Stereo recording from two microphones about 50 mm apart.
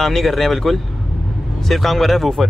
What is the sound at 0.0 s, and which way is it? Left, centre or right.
Speech, centre.